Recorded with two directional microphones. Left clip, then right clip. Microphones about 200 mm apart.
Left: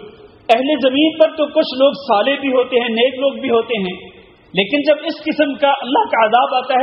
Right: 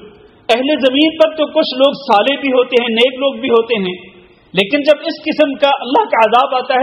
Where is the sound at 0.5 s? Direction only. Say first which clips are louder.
Right 1 dB; 30° right (ahead or behind).